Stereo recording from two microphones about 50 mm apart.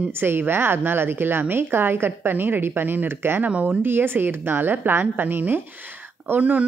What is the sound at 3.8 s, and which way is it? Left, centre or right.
A woman's voice, right.